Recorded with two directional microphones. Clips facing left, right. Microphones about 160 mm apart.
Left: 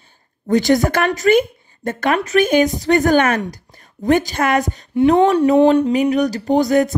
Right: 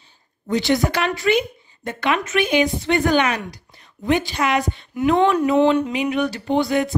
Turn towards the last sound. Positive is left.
turn(degrees=45)  # may be behind; listen again after turning